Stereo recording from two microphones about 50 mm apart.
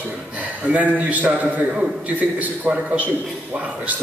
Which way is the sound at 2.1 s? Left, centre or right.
Right.